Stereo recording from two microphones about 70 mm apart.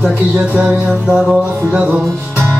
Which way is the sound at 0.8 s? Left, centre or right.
Centre.